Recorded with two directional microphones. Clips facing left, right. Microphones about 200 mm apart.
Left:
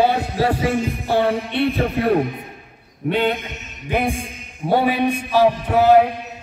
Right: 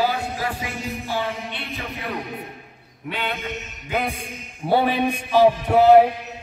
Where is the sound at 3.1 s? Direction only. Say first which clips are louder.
Left 9 dB; 40° left (ahead or behind).